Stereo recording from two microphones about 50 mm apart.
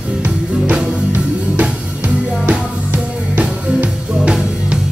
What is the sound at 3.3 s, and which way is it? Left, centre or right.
Music, right.